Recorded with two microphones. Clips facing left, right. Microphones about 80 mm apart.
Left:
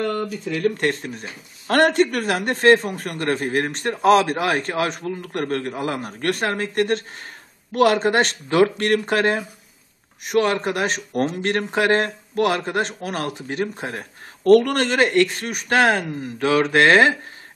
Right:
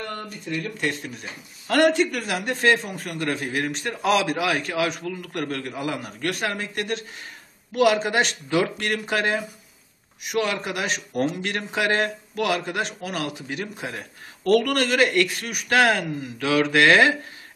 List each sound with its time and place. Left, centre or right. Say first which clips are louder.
0.7 s a man's voice: left 7 dB; left